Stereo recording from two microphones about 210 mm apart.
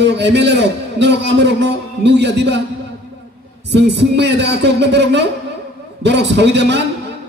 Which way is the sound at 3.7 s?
55° right (ahead or behind).